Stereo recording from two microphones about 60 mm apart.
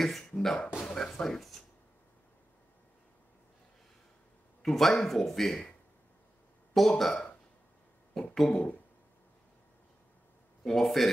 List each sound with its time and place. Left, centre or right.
0.0 s speech: centre
0.8 s a sound: centre
4.6 s speech: centre
6.7 s speech: centre
8.1 s a sound: centre
10.6 s speech: centre